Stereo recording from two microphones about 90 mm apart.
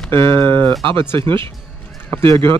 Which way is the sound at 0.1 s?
25° left (ahead or behind).